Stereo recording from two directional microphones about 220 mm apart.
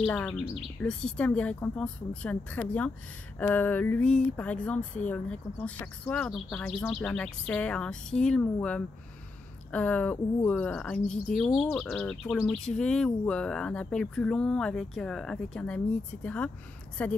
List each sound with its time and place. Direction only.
0.0 s speech: 5° left (ahead or behind)